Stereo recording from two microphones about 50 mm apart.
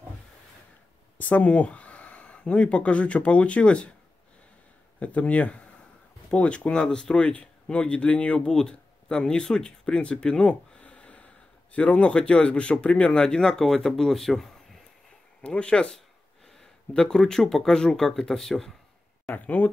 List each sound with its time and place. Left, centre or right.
1.1 s speech: left
5.0 s speech: left
8.5 s speech: centre
15.4 s speech: left
16.9 s speech: centre
19.3 s speech: left